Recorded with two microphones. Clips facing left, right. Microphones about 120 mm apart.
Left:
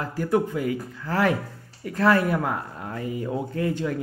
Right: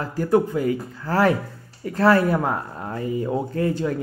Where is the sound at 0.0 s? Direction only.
35° right (ahead or behind).